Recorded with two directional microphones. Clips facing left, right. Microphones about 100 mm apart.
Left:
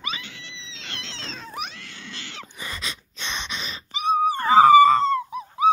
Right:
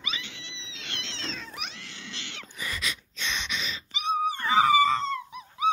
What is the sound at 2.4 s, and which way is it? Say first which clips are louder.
Wheeze: right 1 dB; 30° left (ahead or behind).